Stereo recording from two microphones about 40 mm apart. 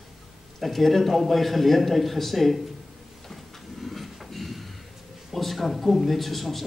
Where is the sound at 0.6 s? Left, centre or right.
Centre.